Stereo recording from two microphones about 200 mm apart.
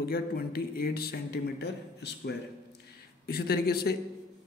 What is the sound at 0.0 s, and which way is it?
Speech, 50° left (ahead or behind).